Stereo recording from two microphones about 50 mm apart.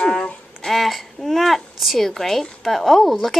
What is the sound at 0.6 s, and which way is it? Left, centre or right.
A child's voice, centre.